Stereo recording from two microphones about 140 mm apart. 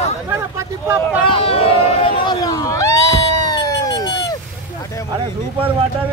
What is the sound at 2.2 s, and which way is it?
Speech, 25° left (ahead or behind).